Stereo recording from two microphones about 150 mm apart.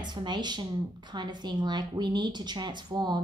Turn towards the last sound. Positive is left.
turn(degrees=-30)  # may be behind; listen again after turning